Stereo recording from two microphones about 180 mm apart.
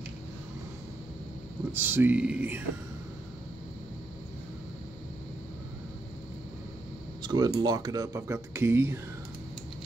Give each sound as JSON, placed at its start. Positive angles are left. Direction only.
{"t": 1.7, "sound": "speech", "side_deg": -10}
{"t": 7.2, "sound": "speech", "side_deg": -25}